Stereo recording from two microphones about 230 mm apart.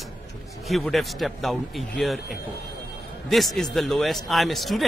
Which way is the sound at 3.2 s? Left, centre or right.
Centre.